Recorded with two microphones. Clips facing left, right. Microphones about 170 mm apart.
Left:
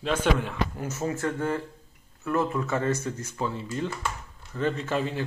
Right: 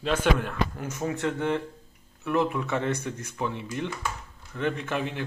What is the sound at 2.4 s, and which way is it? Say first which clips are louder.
Speech: right 1 dB; 10° right (ahead or behind).